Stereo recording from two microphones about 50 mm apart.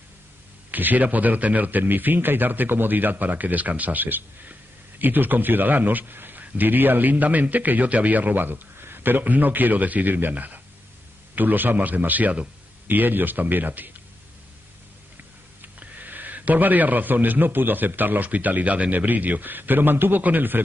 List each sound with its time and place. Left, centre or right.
0.7 s a man's voice: right
15.8 s a man's voice: right